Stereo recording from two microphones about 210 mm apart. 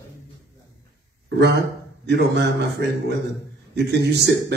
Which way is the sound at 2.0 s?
55° right (ahead or behind).